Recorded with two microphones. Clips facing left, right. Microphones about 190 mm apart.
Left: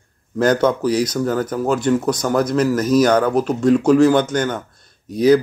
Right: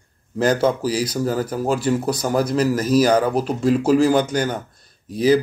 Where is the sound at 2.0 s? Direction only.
30° right (ahead or behind).